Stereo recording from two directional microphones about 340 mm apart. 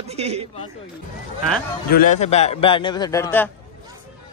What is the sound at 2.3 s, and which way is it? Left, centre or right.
A man's voice, centre.